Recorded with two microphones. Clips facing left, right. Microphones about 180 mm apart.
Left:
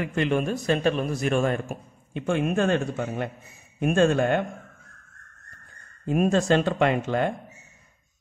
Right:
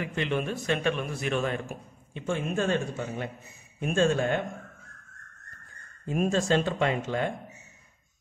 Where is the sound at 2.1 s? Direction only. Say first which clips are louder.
Left 6 dB; 60° left (ahead or behind).